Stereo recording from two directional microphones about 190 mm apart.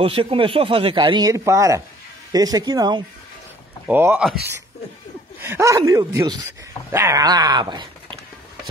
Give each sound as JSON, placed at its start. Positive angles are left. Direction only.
{"t": 0.0, "sound": "speech", "side_deg": -30}
{"t": 3.8, "sound": "speech", "side_deg": -10}
{"t": 5.4, "sound": "speech", "side_deg": -15}